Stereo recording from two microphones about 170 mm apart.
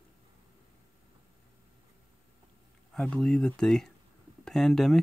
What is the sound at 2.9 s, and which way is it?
Speech, 5° left (ahead or behind).